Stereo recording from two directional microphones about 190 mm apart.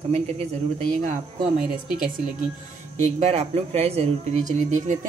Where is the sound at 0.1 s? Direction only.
35° right (ahead or behind).